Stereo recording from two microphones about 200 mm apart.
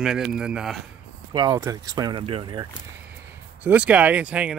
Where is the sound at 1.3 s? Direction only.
20° right (ahead or behind).